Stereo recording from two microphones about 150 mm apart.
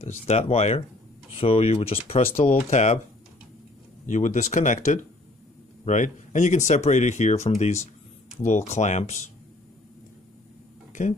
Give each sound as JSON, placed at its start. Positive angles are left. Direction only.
{"t": 0.0, "sound": "speech", "side_deg": 45}
{"t": 4.0, "sound": "speech", "side_deg": 55}